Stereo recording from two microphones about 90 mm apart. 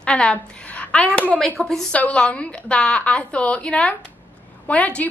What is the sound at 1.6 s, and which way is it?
A woman's voice, 5° left (ahead or behind).